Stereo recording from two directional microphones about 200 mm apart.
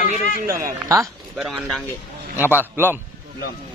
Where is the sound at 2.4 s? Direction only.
10° right (ahead or behind).